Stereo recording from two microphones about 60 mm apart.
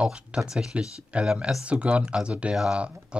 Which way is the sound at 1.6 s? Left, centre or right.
Centre.